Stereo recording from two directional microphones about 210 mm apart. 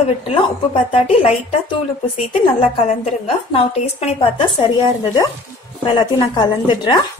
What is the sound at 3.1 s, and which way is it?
A woman's voice, 30° left (ahead or behind).